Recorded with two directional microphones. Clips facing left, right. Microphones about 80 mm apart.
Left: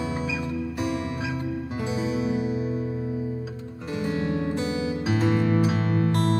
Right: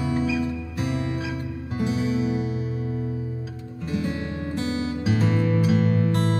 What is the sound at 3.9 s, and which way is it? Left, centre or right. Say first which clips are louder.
Music: left 2 dB; left.